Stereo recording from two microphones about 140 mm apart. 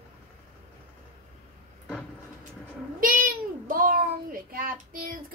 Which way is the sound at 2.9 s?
85° right.